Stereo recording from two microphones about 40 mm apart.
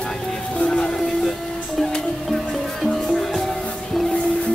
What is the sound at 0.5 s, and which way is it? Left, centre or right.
Music, left.